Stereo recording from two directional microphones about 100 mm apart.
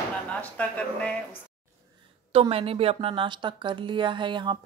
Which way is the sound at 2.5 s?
80° right.